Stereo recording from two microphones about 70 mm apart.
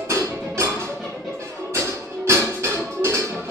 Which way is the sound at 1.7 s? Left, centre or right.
Right.